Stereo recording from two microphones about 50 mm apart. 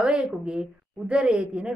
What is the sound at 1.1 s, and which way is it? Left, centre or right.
Speech, right.